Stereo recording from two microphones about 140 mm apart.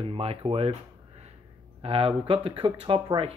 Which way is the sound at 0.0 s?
45° right (ahead or behind).